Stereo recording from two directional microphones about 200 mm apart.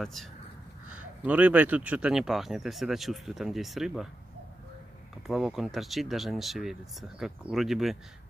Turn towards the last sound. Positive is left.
turn(degrees=0)  # may be behind; listen again after turning